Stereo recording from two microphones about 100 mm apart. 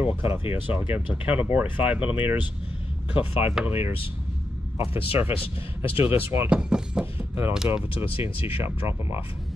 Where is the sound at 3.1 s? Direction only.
70° left (ahead or behind).